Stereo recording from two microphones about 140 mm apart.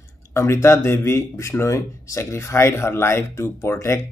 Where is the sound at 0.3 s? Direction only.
20° left (ahead or behind).